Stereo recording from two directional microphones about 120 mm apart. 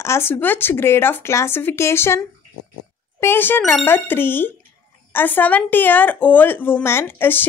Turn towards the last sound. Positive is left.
turn(degrees=15)  # may be behind; listen again after turning